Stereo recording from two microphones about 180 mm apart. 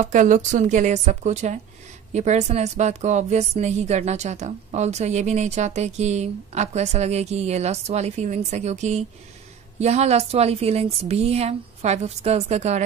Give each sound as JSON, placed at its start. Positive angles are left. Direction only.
{"t": 0.0, "sound": "a woman's voice", "side_deg": -45}